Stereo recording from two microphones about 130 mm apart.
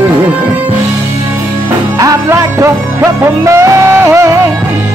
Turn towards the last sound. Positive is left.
turn(degrees=-20)  # may be behind; listen again after turning